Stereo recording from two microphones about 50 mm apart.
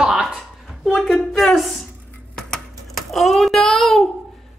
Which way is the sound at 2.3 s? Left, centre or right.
Centre.